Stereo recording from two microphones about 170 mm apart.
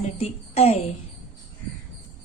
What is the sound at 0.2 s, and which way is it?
Speech, 35° left (ahead or behind).